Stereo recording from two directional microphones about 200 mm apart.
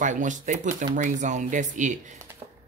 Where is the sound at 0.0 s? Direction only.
40° right (ahead or behind).